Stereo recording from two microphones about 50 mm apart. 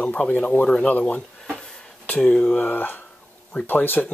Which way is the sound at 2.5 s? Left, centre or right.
Left.